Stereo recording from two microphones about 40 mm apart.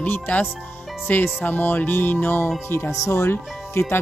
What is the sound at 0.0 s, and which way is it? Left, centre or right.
Speech, left.